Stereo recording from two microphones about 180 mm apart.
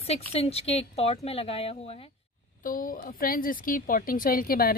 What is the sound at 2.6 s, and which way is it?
A woman's voice, 50° left (ahead or behind).